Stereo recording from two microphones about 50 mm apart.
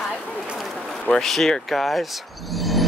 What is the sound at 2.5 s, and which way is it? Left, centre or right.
Music, centre.